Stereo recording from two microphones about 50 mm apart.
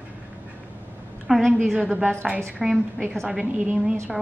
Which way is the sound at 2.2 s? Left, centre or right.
Centre.